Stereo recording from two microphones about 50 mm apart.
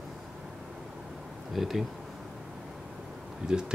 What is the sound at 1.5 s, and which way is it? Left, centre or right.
Speech, centre.